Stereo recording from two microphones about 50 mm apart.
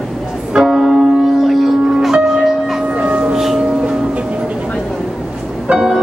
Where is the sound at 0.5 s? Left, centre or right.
Centre.